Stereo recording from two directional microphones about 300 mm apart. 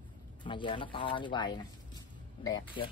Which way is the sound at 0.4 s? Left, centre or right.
Centre.